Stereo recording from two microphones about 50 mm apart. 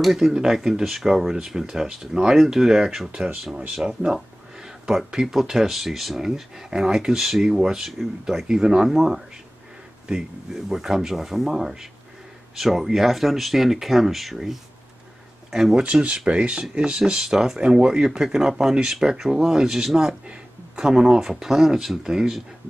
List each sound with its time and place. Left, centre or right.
0.0 s speech: centre
15.8 s speech: right; by 22.4 s centre